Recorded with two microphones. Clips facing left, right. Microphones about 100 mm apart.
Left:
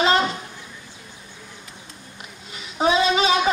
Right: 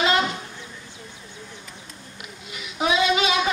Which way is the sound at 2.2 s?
35° left (ahead or behind).